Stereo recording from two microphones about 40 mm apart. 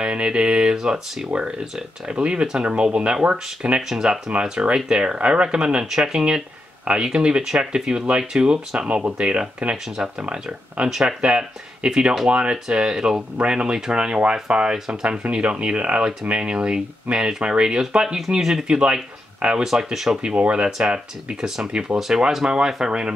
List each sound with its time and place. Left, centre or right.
0.0 s speech: right
3.9 s speech: centre
5.9 s speech: centre
6.1 s speech: right
19.6 s speech: centre
20.2 s speech: right
21.9 s speech: centre